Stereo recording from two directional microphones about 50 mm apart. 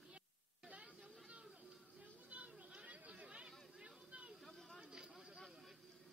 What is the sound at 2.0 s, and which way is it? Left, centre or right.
Chatter, right.